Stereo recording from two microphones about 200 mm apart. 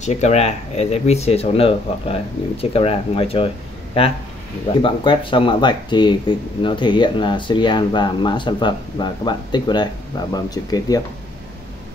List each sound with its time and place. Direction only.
0.0 s speech: 35° left (ahead or behind); by 11.0 s 20° left (ahead or behind)